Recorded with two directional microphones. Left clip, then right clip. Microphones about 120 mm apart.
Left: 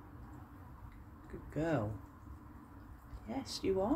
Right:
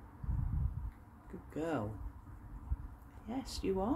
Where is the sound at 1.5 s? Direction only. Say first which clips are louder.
Left 2 dB; 35° right (ahead or behind).